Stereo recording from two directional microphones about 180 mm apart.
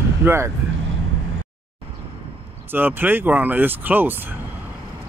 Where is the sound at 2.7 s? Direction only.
10° right (ahead or behind).